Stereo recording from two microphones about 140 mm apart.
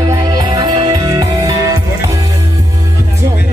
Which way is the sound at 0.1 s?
30° right (ahead or behind).